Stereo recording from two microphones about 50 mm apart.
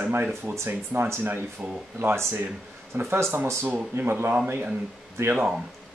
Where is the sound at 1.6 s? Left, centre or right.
Right.